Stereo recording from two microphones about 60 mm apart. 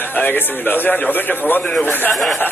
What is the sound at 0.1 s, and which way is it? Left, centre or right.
A man's voice, left.